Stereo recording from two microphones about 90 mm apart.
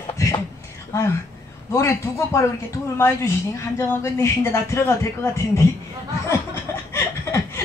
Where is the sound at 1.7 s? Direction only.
35° left (ahead or behind).